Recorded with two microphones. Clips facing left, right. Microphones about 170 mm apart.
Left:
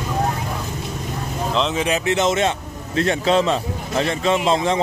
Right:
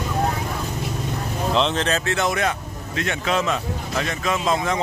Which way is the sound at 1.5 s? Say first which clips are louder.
Left 1 dB; 5° left (ahead or behind).